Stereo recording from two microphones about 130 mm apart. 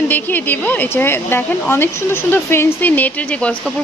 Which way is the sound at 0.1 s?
15° left (ahead or behind).